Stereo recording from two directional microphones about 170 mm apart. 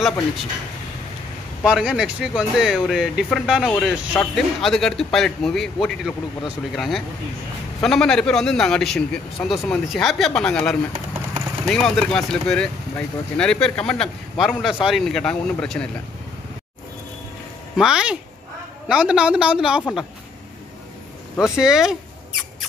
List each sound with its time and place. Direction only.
1.6 s speech: 5° right (ahead or behind)
17.7 s speech: 5° right (ahead or behind)
21.4 s speech: 5° right (ahead or behind)